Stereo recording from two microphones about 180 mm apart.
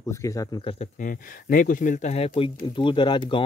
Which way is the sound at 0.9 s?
50° left (ahead or behind).